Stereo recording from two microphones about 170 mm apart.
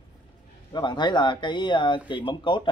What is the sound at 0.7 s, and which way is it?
Speech, 25° left (ahead or behind).